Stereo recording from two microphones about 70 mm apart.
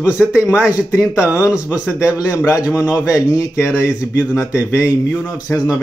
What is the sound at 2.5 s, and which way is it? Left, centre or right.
Speech, left.